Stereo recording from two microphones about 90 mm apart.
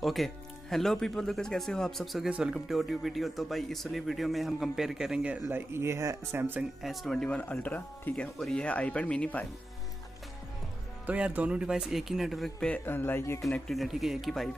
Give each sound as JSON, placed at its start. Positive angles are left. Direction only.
{"t": 0.0, "sound": "speech", "side_deg": 0}
{"t": 2.2, "sound": "speech", "side_deg": -10}
{"t": 5.7, "sound": "speech", "side_deg": -30}
{"t": 6.8, "sound": "speech", "side_deg": 0}
{"t": 11.1, "sound": "speech", "side_deg": -15}
{"t": 12.5, "sound": "speech", "side_deg": 15}
{"t": 13.7, "sound": "speech", "side_deg": 0}